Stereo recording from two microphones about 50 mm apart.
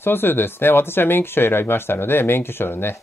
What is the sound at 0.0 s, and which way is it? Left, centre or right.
Speech, left.